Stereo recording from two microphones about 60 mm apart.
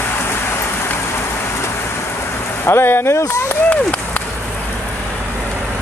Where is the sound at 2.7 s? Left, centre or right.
Left.